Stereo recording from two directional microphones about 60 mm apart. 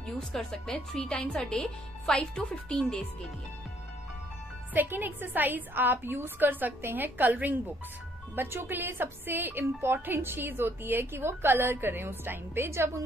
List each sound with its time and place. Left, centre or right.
0.0 s speech: centre
4.7 s a woman's voice: right